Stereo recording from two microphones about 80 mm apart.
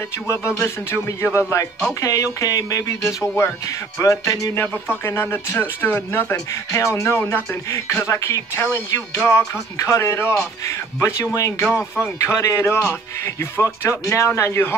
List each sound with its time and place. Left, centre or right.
0.3 s speech: left
2.0 s speech: left
4.6 s speech: left
6.7 s speech: left
7.2 s speech: left
7.7 s speech: left
11.7 s speech: left